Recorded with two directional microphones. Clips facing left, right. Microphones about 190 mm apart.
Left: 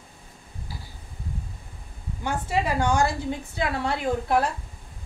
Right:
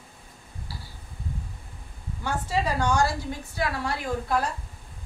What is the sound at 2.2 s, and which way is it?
A woman's voice, 20° left (ahead or behind).